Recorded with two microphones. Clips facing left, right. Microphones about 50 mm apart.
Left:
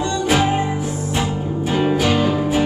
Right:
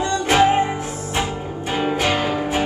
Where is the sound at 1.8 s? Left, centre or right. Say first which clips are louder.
Left 2 dB; centre.